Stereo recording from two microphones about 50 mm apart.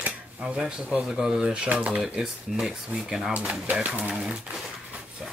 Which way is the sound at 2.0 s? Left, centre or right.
Centre.